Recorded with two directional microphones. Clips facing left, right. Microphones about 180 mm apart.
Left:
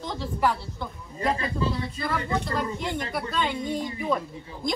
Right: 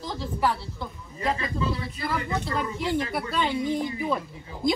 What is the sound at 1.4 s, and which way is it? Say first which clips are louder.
Speech: left 1 dB; 30° left (ahead or behind).